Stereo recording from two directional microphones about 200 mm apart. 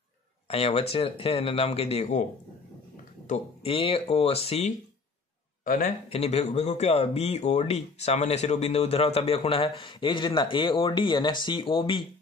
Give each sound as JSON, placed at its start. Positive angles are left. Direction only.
{"t": 0.5, "sound": "speech", "side_deg": 30}
{"t": 3.3, "sound": "speech", "side_deg": 30}
{"t": 5.6, "sound": "speech", "side_deg": 40}